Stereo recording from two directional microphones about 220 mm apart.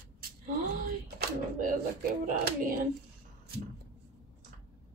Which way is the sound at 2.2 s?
40° right (ahead or behind).